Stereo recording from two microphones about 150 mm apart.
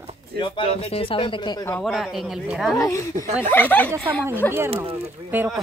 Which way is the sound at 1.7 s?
Centre (ahead or behind).